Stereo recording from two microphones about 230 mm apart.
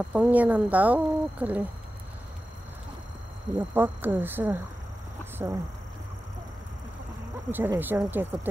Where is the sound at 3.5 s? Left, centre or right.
Centre.